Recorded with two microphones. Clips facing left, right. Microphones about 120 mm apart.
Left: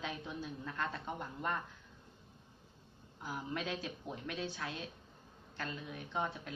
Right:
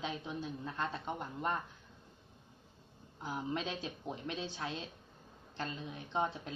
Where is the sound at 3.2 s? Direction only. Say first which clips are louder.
Right 2 dB; 25° right (ahead or behind).